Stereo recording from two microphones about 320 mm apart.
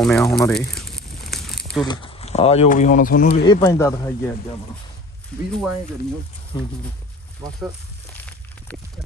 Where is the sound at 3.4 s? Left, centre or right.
Centre.